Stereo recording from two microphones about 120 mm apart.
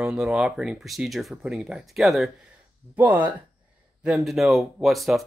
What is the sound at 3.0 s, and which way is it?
Speech, 15° right (ahead or behind).